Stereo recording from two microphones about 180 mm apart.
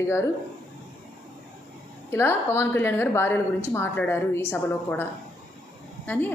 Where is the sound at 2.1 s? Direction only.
15° left (ahead or behind).